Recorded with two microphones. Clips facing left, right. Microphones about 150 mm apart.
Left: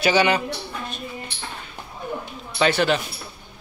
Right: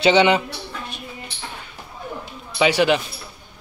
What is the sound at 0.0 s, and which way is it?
Speech, 25° right (ahead or behind).